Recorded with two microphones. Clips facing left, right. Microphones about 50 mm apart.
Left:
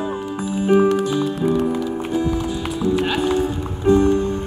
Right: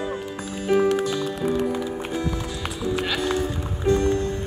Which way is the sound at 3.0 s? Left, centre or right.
Left.